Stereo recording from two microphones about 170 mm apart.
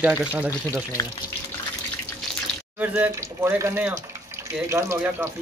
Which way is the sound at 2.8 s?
10° right (ahead or behind).